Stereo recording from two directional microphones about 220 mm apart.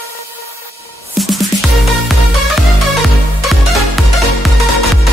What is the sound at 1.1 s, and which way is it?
Music, centre (ahead or behind).